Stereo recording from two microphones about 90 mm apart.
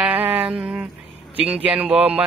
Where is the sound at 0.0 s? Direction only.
20° right (ahead or behind).